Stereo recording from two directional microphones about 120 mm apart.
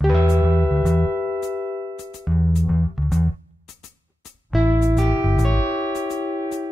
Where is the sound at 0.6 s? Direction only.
25° left (ahead or behind).